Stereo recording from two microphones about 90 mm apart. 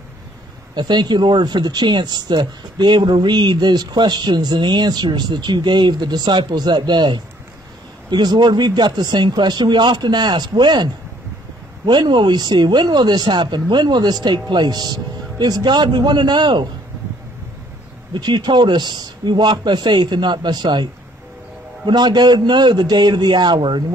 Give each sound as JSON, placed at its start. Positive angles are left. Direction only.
{"t": 0.7, "sound": "speech", "side_deg": -55}
{"t": 18.1, "sound": "speech", "side_deg": -55}